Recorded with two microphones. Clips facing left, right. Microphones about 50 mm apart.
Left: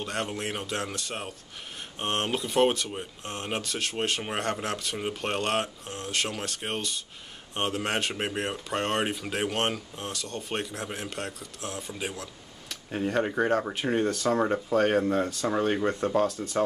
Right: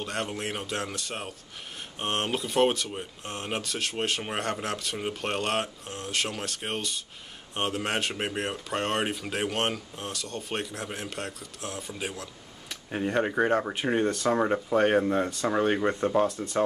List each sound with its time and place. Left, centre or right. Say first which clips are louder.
0.0 s speech: even; centre
12.6 s speech: even; centre